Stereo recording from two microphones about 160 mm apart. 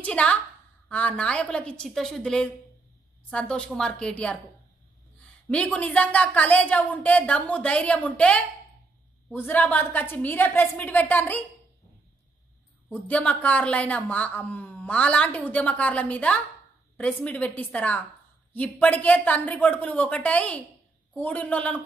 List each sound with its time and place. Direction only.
0.0 s a woman's voice: 10° left (ahead or behind)
5.5 s speech: 5° left (ahead or behind)
12.9 s speech: 10° left (ahead or behind)